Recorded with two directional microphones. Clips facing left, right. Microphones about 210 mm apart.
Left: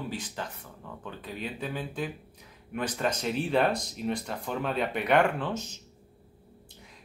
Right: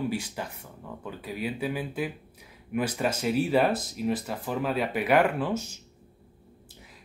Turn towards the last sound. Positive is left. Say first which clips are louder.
# right 3 dB
turn(degrees=-10)  # may be behind; listen again after turning